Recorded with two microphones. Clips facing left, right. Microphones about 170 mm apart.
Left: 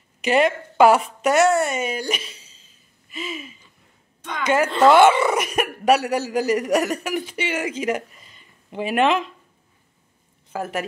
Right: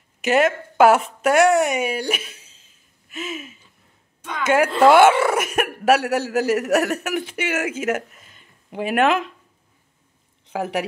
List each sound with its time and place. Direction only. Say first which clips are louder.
0.2 s a woman's voice: right 1 dB; 5° right (ahead or behind)
2.0 s a sound: right 1 dB; 10° right (ahead or behind)
4.2 s a woman's voice: right 2 dB; 5° right (ahead or behind)
10.5 s a woman's voice: right 3 dB; 15° right (ahead or behind)